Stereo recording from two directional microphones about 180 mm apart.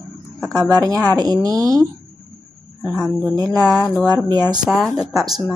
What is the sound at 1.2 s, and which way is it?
Speech, 20° right (ahead or behind).